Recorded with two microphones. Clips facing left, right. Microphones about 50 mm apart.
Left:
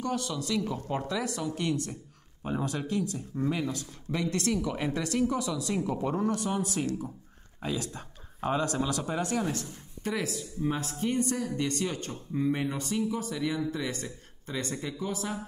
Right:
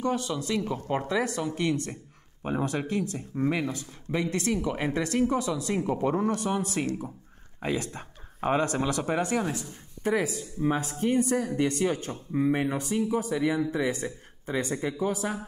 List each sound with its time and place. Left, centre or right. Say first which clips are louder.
0.0 s speech: right 3 dB; right
3.6 s speech: right 1 dB; right